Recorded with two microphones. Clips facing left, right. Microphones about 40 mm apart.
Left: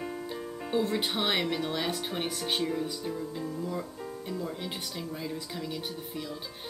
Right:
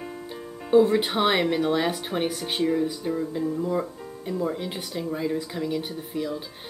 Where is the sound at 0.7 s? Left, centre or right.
Centre.